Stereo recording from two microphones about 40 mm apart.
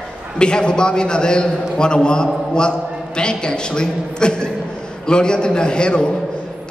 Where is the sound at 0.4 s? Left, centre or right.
Left.